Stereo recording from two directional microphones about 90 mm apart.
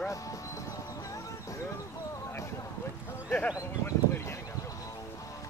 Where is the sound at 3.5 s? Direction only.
30° left (ahead or behind).